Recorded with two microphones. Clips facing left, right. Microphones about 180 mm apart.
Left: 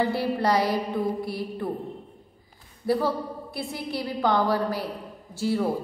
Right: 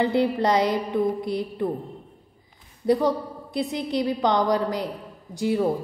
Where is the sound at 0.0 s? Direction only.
20° right (ahead or behind).